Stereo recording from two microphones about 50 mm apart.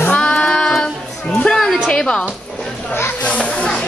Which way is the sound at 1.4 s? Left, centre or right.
Centre.